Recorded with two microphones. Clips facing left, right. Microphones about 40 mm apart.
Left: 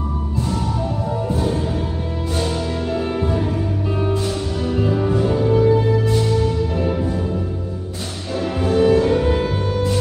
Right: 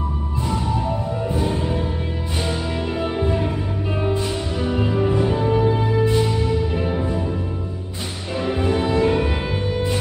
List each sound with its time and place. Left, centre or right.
1.3 s music: right
2.9 s music: right
8.5 s music: right